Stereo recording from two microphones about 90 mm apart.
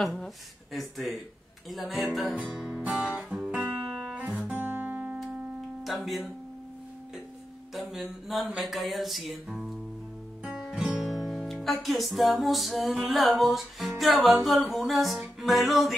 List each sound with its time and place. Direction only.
0.0 s speech: centre (ahead or behind)
0.7 s music: centre (ahead or behind); by 5.2 s 20° right (ahead or behind)
5.9 s music: centre (ahead or behind)
7.7 s music: centre (ahead or behind)